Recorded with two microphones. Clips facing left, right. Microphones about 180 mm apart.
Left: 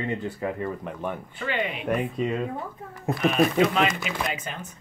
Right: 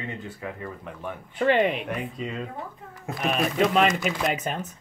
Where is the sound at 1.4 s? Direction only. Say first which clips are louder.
Right 9 dB; 45° right (ahead or behind).